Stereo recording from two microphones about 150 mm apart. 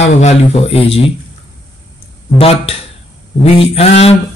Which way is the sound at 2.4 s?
40° left (ahead or behind).